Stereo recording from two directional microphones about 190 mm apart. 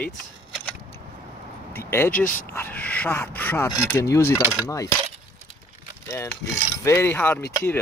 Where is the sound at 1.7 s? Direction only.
15° left (ahead or behind).